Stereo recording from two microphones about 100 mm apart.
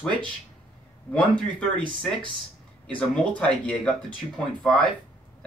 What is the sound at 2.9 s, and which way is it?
Speech, 10° left (ahead or behind).